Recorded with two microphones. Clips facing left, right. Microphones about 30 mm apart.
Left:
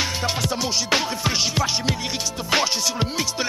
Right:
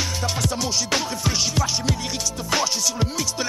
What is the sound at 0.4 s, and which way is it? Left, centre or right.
Music, left.